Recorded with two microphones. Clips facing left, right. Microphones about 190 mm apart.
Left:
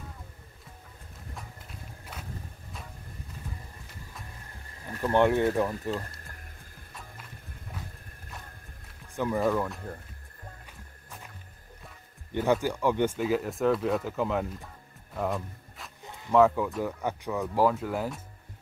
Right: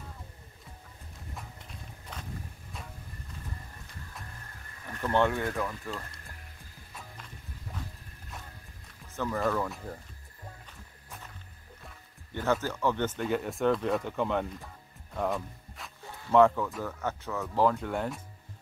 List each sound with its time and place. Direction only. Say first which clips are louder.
1.3 s walk: left 1 dB; 5° left (ahead or behind)
5.0 s speech: left 4 dB; 15° left (ahead or behind)
9.1 s speech: left 4 dB; 15° left (ahead or behind)
9.6 s speech: left 2 dB; centre (ahead or behind)
12.3 s speech: left 4 dB; 15° left (ahead or behind)
15.1 s music: even; centre (ahead or behind)
16.0 s a sound: even; 20° left (ahead or behind)
16.3 s speech: left 1 dB; 5° left (ahead or behind)